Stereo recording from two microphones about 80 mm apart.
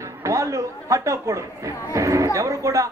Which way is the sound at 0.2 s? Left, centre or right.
Right.